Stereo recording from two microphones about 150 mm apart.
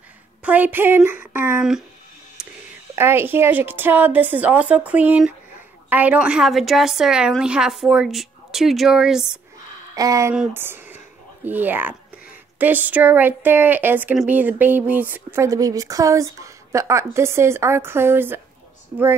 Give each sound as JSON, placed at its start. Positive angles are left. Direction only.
{"t": 0.4, "sound": "a woman's voice", "side_deg": -10}
{"t": 2.4, "sound": "whispering", "side_deg": -5}
{"t": 3.0, "sound": "a woman's voice", "side_deg": -15}
{"t": 9.9, "sound": "speech", "side_deg": -20}
{"t": 10.3, "sound": "speech", "side_deg": -10}